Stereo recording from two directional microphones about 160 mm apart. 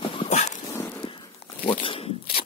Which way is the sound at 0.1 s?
40° left (ahead or behind).